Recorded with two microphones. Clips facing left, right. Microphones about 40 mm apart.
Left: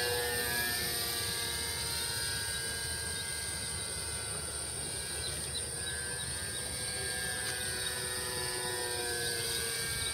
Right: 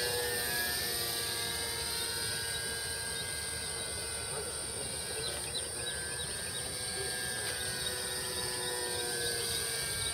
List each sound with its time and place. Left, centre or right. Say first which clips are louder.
0.0 s music: left 1 dB; centre
7.0 s helicopter: even; centre
8.4 s a sound: even; centre